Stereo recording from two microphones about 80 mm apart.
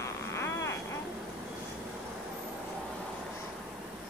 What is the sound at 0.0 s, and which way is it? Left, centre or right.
Vehicle, left.